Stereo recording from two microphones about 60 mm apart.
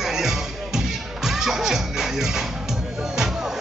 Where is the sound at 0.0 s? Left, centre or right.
Centre.